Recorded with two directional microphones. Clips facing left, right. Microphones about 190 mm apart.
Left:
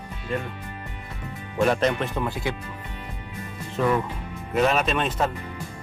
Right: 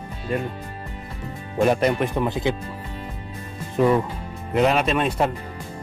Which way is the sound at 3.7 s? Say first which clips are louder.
Right 4 dB; 25° right (ahead or behind).